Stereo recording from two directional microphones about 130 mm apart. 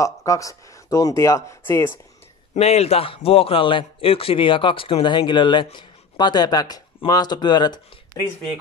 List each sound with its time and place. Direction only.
0.0 s speech: 25° left (ahead or behind)
2.5 s a man's voice: 55° left (ahead or behind); by 8.3 s 35° left (ahead or behind)